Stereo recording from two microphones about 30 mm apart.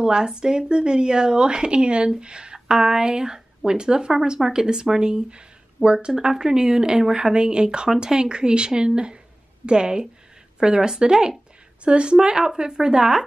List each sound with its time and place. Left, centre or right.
0.0 s a woman's voice: right
7.3 s a woman's voice: right